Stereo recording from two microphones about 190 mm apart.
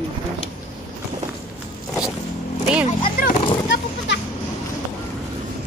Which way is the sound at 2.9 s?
40° left (ahead or behind).